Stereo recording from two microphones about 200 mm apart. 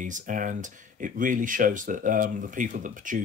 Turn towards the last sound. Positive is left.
turn(degrees=-40)  # may be behind; listen again after turning